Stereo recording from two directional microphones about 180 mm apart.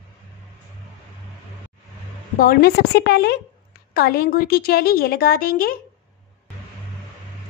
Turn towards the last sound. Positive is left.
turn(degrees=55)  # may be behind; listen again after turning